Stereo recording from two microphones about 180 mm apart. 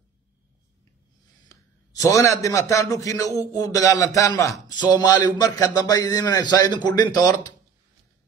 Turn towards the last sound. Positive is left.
turn(degrees=20)  # may be behind; listen again after turning